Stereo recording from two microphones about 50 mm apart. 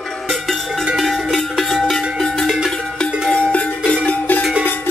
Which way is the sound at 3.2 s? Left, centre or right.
Centre.